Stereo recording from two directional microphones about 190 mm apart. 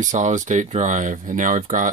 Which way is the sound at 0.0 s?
40° right (ahead or behind).